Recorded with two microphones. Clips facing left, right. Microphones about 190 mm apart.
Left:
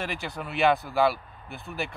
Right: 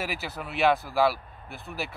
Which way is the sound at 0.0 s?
5° right (ahead or behind).